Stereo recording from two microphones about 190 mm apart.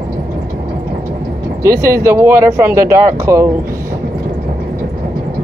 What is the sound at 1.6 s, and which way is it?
Speech, 15° right (ahead or behind).